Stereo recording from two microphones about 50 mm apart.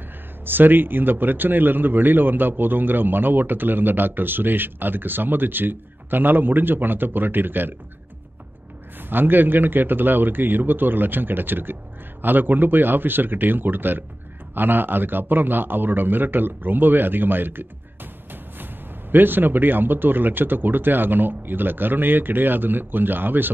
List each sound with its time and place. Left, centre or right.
0.5 s speech: right
9.1 s a man's voice: right
19.1 s speech: right